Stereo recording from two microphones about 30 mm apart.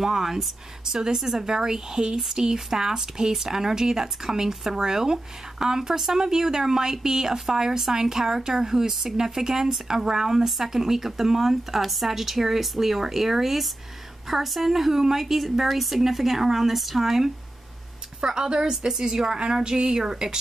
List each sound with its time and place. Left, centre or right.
0.0 s speech: centre
18.2 s speech: right